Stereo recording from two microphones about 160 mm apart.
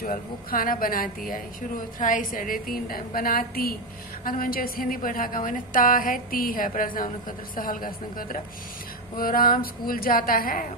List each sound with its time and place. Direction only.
0.0 s a woman's voice: 65° left (ahead or behind)